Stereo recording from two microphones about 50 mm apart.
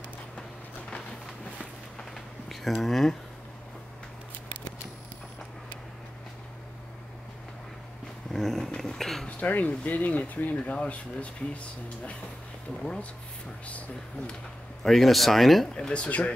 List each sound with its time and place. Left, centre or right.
0.4 s a sound: centre
2.5 s speech: centre
8.3 s a sound: centre
9.4 s speech: left
13.7 s speech: left
14.8 s speech: centre
15.7 s speech: centre